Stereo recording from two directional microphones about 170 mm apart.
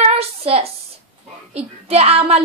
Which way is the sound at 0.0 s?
35° right (ahead or behind).